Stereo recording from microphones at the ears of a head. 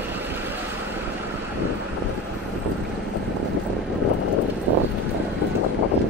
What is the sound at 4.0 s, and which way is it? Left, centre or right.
Vehicle, left.